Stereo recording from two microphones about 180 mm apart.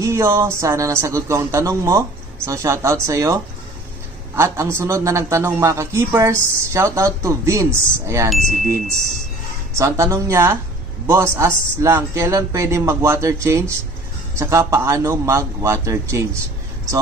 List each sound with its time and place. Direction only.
0.0 s a man's voice: 15° right (ahead or behind)
4.4 s a man's voice: 15° right (ahead or behind)
9.8 s a man's voice: 15° right (ahead or behind)